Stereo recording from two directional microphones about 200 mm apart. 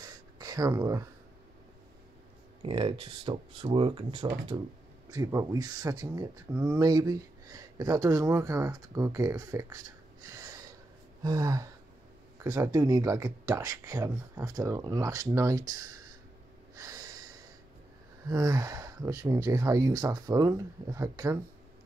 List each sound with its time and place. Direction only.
0.0 s a sound: 20° right (ahead or behind)
2.6 s speech: 25° right (ahead or behind)
10.2 s a sound: 15° right (ahead or behind)
11.2 s speech: 15° right (ahead or behind)
16.7 s snort: 15° right (ahead or behind)
18.3 s speech: 20° right (ahead or behind)